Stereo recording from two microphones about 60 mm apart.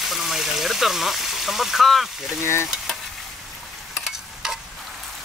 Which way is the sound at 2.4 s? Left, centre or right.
Left.